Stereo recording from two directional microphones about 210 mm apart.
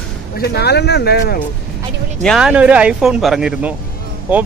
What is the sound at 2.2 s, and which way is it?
Speech, centre (ahead or behind).